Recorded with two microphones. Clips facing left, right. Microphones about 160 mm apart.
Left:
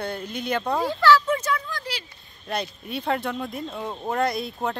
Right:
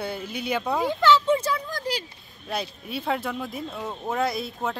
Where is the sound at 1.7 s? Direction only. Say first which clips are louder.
Right 4 dB; 45° right (ahead or behind).